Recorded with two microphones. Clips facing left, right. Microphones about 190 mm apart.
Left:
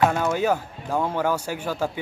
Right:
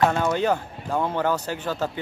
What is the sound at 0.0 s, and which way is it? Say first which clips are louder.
Speech: even; 5° left (ahead or behind).